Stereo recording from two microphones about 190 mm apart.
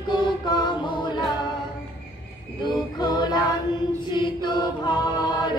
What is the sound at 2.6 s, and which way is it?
Music, 20° left (ahead or behind).